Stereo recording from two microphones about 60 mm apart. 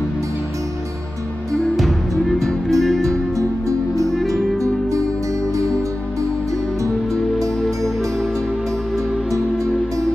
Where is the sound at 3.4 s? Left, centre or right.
Right.